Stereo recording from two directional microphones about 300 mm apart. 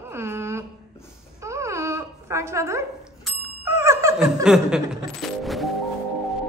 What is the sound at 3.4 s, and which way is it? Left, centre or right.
Laughter, centre.